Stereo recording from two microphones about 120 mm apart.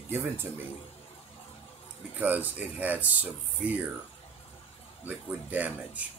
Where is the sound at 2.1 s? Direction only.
15° right (ahead or behind).